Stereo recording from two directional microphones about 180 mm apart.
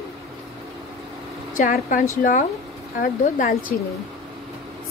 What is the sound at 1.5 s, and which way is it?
A woman's voice, 45° left (ahead or behind).